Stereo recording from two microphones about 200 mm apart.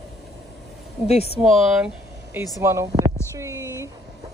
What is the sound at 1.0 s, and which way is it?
Speech, 30° left (ahead or behind).